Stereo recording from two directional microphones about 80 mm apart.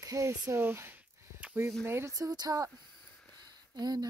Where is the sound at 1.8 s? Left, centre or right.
Right.